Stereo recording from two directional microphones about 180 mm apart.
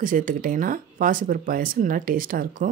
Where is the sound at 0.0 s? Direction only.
50° right (ahead or behind).